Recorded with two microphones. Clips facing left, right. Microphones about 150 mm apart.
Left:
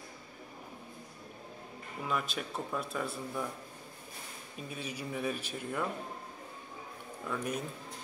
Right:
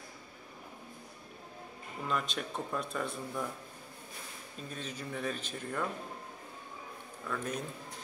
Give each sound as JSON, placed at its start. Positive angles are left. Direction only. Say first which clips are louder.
{"t": 2.0, "sound": "speech", "louder": "even", "side_deg": 5}
{"t": 4.6, "sound": "speech", "louder": "left 1 dB", "side_deg": 10}
{"t": 7.2, "sound": "speech", "louder": "left 1 dB", "side_deg": 10}